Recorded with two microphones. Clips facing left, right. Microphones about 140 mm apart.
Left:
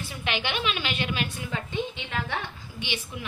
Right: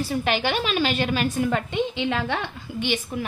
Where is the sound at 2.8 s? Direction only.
45° right (ahead or behind).